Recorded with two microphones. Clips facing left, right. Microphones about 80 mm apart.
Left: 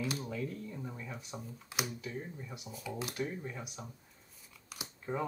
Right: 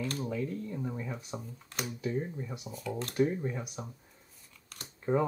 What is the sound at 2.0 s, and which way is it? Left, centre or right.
Speech, right.